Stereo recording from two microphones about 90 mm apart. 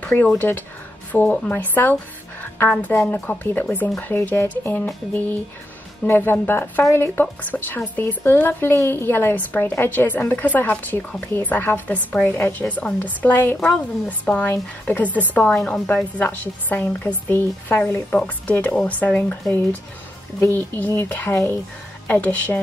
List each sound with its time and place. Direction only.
0.0 s speech: 20° left (ahead or behind)
6.0 s speech: 25° left (ahead or behind)
20.3 s speech: 25° left (ahead or behind)